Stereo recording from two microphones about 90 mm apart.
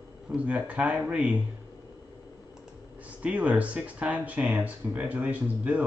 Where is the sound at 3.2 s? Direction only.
15° right (ahead or behind).